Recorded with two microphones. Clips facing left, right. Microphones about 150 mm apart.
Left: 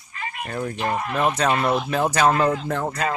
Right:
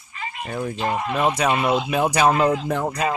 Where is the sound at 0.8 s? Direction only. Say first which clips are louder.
Right 1 dB; 20° right (ahead or behind).